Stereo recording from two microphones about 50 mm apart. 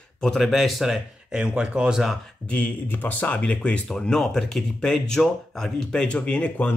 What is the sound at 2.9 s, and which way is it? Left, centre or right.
Speech, left.